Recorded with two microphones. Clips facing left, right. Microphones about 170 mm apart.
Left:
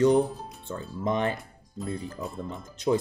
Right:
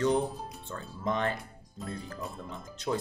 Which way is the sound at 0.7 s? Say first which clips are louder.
Left 4 dB; 15° left (ahead or behind).